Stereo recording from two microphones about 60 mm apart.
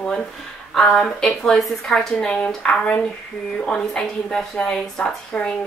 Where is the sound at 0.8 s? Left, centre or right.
Centre.